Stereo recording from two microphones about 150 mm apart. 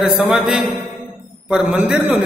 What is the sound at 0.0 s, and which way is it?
A man's voice, 5° right (ahead or behind).